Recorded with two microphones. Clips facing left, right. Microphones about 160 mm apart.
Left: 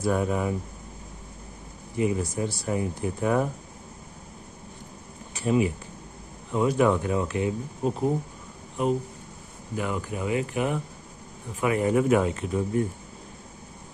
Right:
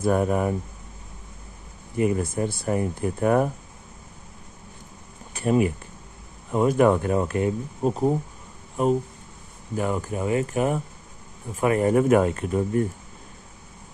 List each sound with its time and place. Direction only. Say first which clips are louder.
0.0 s speech: right 3 dB; 50° right (ahead or behind)
2.0 s speech: right 3 dB; 55° right (ahead or behind)
5.3 s speech: right 2 dB; 55° right (ahead or behind)
9.8 s speech: right 4 dB; 40° right (ahead or behind)